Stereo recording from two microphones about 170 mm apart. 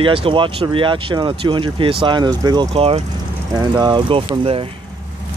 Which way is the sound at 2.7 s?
35° right (ahead or behind).